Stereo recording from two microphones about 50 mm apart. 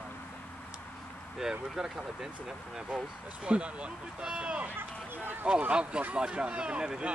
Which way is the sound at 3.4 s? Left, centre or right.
Right.